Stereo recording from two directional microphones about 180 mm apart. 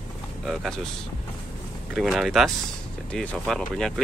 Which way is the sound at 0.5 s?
Centre (ahead or behind).